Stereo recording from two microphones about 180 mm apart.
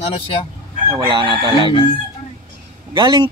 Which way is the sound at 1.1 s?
30° right (ahead or behind).